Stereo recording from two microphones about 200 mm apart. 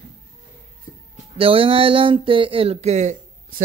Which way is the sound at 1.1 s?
30° right (ahead or behind).